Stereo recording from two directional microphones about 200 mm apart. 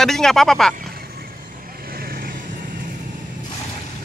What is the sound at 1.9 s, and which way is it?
Vehicle, 50° right (ahead or behind).